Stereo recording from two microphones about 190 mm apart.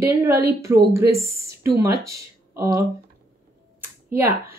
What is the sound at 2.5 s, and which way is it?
Speech, 15° right (ahead or behind).